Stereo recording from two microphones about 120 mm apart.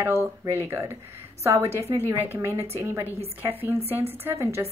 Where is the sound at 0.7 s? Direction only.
20° right (ahead or behind).